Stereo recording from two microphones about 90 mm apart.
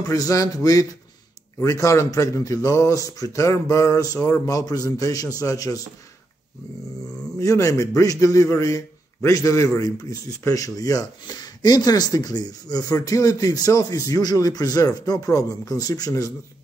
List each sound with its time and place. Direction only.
0.1 s a man's voice: 40° left (ahead or behind)
7.3 s a man's voice: 35° left (ahead or behind)